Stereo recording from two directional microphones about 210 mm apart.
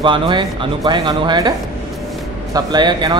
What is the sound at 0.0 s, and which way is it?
Speech, 25° right (ahead or behind).